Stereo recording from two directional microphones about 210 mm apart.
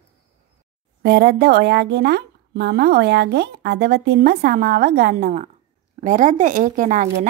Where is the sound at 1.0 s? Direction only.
50° right (ahead or behind).